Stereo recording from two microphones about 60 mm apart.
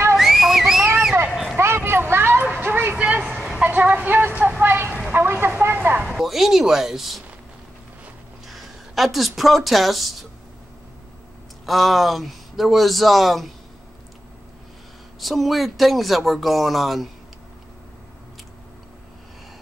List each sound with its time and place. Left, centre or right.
0.1 s whistle: centre
1.3 s a sound: centre
1.9 s a sound: right
2.6 s bow-wow: right
3.0 s vehicle: centre
4.6 s a sound: right
5.1 s vehicle: right
6.0 s speech: centre
8.5 s speech: centre
11.6 s speech: centre
15.1 s speech: centre